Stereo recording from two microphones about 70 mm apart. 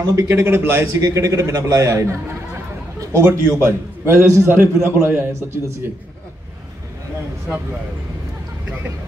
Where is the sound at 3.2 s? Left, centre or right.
Right.